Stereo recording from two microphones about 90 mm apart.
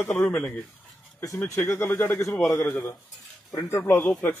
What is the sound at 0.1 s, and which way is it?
Speech, 20° left (ahead or behind).